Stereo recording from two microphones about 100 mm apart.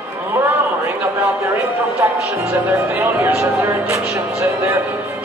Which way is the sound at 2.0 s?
25° right (ahead or behind).